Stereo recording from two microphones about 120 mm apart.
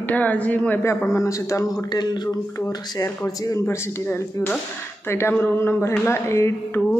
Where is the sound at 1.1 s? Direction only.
25° left (ahead or behind).